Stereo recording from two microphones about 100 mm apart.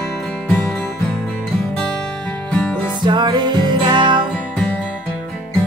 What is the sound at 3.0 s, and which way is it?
Music, 50° right (ahead or behind).